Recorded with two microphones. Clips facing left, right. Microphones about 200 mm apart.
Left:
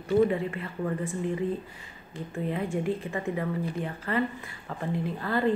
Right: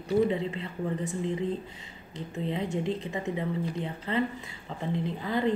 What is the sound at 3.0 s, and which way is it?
Speech, 20° right (ahead or behind).